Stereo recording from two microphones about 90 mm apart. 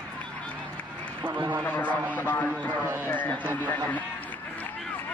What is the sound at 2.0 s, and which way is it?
Speech, 15° right (ahead or behind).